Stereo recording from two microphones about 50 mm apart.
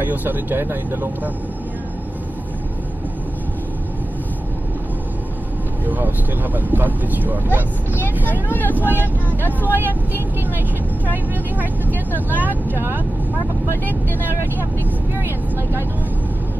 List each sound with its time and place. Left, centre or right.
0.1 s speech: right
5.9 s speech: right
8.3 s speech: left
12.3 s speech: right